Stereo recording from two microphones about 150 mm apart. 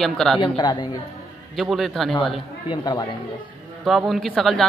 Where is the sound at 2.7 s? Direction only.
30° left (ahead or behind).